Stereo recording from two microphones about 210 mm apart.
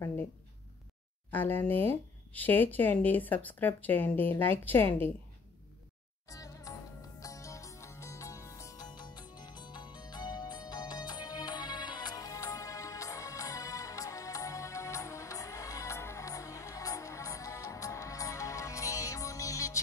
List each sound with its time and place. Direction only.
1.3 s speech: 10° left (ahead or behind)
6.2 s music: 15° left (ahead or behind)